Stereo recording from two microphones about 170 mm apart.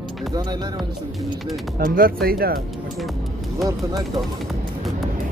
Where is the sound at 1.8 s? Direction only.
60° right (ahead or behind).